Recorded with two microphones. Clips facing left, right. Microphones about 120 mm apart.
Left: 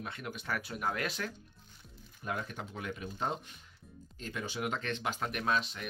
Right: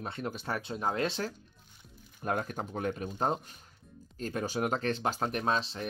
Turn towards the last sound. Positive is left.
turn(degrees=-30)  # may be behind; listen again after turning